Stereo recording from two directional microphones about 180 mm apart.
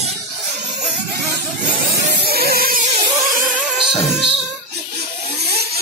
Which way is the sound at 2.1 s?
60° right (ahead or behind).